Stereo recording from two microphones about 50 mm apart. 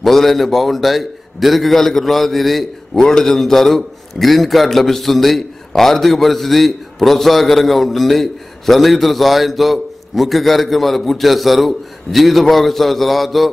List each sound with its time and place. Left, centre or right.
0.0 s a man's voice: centre